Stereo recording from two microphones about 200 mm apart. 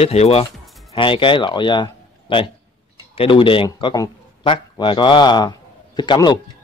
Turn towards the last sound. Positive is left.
turn(degrees=20)  # may be behind; listen again after turning